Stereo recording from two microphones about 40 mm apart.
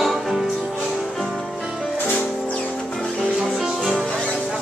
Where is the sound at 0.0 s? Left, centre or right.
Centre.